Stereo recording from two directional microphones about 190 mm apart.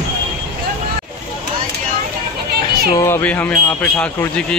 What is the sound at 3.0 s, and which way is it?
Speech, 10° left (ahead or behind).